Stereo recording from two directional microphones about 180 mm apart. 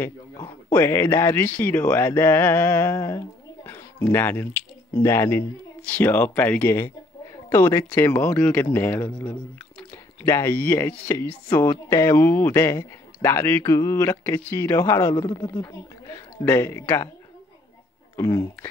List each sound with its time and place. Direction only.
0.0 s speech: 15° left (ahead or behind)
18.1 s speech: 15° left (ahead or behind)